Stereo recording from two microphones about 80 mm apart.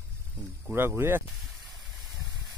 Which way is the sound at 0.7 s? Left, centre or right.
Right.